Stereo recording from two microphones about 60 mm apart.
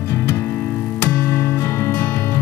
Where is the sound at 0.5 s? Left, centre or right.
Centre.